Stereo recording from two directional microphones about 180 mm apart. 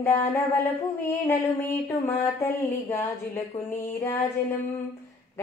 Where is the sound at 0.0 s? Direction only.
15° left (ahead or behind).